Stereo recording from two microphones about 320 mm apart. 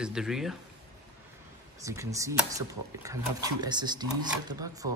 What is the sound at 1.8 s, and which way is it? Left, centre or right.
Speech, centre.